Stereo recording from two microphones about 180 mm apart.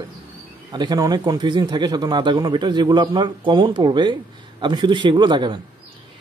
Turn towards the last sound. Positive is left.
turn(degrees=-25)  # may be behind; listen again after turning